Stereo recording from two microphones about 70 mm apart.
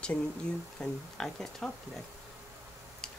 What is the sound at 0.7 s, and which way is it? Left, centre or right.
Speech, centre.